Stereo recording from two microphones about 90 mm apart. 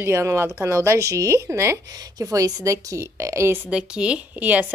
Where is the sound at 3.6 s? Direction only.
10° right (ahead or behind).